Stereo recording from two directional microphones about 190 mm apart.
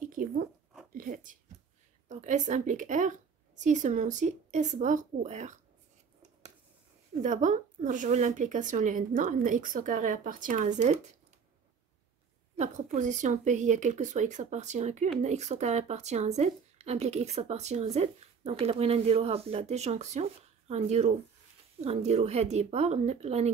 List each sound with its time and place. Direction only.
0.0 s zipper: 45° right (ahead or behind)
0.9 s a sound: 45° right (ahead or behind)
2.0 s a woman's voice: 40° right (ahead or behind)
7.2 s speech: 40° right (ahead or behind)
12.5 s speech: 40° right (ahead or behind)